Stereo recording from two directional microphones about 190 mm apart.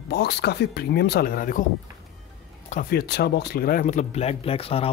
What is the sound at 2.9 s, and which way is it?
Speech, 60° left (ahead or behind).